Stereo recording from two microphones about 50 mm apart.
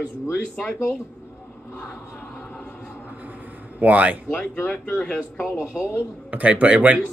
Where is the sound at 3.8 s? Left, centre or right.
Right.